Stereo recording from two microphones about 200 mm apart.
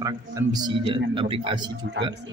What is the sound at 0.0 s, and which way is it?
Speech, 20° right (ahead or behind).